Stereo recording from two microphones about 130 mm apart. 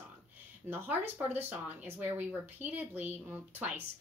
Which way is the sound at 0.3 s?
15° right (ahead or behind).